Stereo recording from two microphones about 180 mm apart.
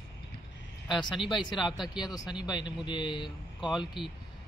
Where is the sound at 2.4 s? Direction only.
25° left (ahead or behind).